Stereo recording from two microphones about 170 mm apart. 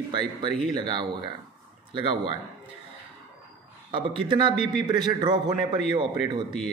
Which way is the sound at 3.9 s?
30° right (ahead or behind).